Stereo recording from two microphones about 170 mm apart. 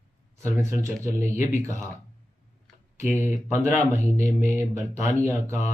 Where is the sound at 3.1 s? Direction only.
15° right (ahead or behind).